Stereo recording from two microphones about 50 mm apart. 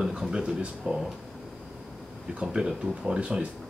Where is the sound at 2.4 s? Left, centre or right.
Centre.